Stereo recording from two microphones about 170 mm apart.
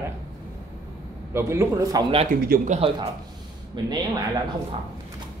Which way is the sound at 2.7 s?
35° right (ahead or behind).